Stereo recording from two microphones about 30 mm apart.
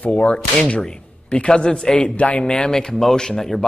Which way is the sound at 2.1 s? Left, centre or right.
Left.